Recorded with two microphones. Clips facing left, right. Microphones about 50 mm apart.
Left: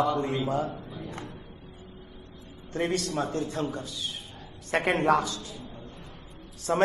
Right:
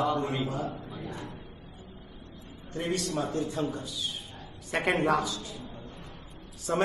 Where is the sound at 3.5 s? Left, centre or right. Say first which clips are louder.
Even; centre.